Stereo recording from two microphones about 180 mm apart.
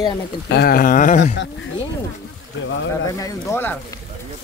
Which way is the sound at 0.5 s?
60° left (ahead or behind).